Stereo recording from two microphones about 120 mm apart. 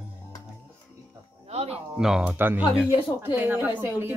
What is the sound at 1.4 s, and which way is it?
Speech, 60° right (ahead or behind).